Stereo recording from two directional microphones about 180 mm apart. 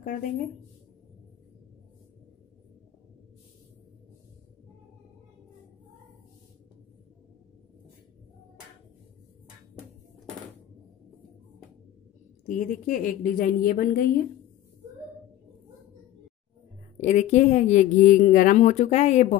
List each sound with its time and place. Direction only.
0.0 s speech: 50° left (ahead or behind)
12.4 s a woman's voice: 45° left (ahead or behind)
17.0 s a woman's voice: 40° left (ahead or behind)